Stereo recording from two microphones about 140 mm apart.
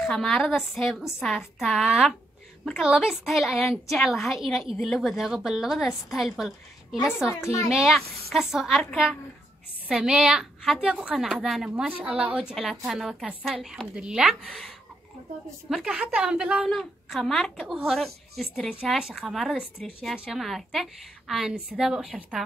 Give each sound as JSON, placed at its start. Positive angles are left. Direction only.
{"t": 0.0, "sound": "a woman's voice", "side_deg": 5}
{"t": 7.2, "sound": "a woman's voice", "side_deg": 20}
{"t": 7.6, "sound": "a woman's voice", "side_deg": 0}
{"t": 15.7, "sound": "a woman's voice", "side_deg": -5}